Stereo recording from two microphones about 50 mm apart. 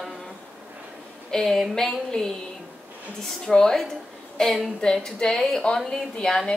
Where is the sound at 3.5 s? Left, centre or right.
Centre.